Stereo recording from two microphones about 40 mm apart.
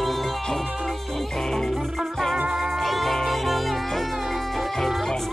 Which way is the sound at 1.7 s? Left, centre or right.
Centre.